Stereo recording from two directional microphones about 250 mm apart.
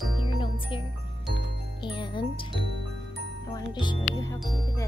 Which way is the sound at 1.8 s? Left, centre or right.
Centre.